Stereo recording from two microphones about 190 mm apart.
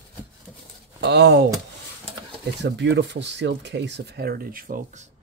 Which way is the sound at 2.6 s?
65° right (ahead or behind).